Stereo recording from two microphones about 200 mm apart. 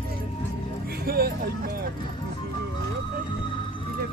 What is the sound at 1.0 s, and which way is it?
Music, 50° right (ahead or behind).